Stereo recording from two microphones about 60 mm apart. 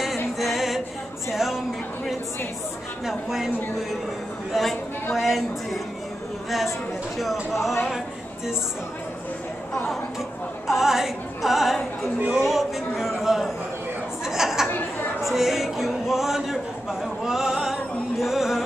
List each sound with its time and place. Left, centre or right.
0.4 s music: centre
1.3 s a sound: centre
3.1 s speech: centre
7.2 s speech: centre
10.7 s speech: centre
14.2 s chatter: centre
14.7 s chatter: left
15.2 s a sound: centre
18.2 s music: centre